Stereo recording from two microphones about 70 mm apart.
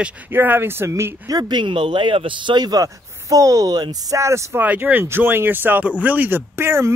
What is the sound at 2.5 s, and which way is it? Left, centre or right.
Speech, right.